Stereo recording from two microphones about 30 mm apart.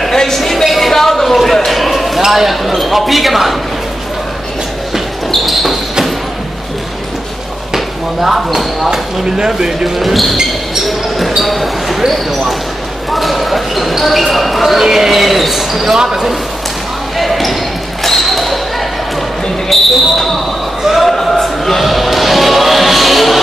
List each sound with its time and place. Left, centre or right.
0.0 s a sound: centre
2.2 s speech: centre
4.9 s basketball bounce: centre
7.7 s speech: centre
9.4 s speech: right
9.9 s speech: centre
10.9 s basketball bounce: centre
13.1 s speech: centre
15.9 s speech: centre
17.2 s basketball bounce: centre
19.7 s speech: centre
20.8 s basketball bounce: centre
21.1 s a sound: centre
21.7 s music: centre